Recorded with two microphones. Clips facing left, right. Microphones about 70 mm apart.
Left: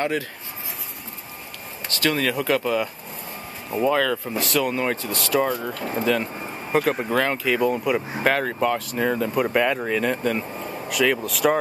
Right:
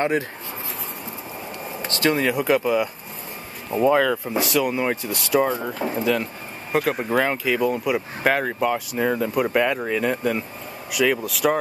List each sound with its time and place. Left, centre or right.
1.9 s speech: right
6.7 s speech: centre